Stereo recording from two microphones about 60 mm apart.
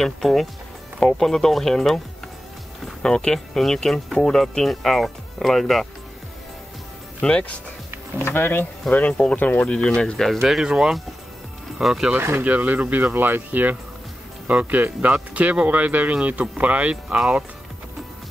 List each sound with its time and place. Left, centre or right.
0.0 s speech: centre
3.0 s speech: centre
7.2 s speech: centre
8.2 s speech: left
8.8 s speech: centre
9.3 s speech: left
10.2 s speech: centre
10.6 s speech: centre
12.1 s speech: right
12.4 s speech: right